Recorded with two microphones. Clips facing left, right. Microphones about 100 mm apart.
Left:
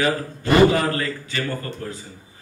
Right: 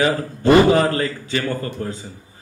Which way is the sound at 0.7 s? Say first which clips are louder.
Right 4 dB; 30° right (ahead or behind).